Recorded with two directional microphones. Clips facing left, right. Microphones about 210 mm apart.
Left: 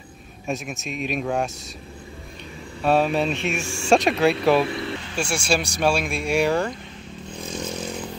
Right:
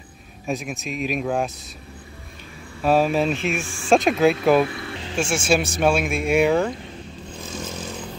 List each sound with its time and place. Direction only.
0.5 s speech: centre (ahead or behind)
2.8 s speech: centre (ahead or behind)
4.6 s speech: 25° left (ahead or behind)
5.1 s speech: centre (ahead or behind)